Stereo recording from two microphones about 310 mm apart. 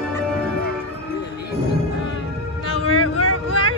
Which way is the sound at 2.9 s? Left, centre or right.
Left.